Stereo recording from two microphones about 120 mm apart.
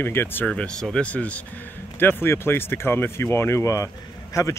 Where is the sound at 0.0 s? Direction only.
20° left (ahead or behind).